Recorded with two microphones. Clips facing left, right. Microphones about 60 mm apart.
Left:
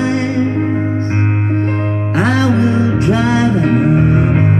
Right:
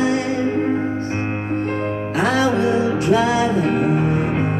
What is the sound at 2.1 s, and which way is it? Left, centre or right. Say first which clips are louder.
Music: left 4 dB; left.